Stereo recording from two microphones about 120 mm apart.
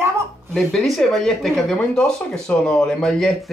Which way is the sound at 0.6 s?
5° left (ahead or behind).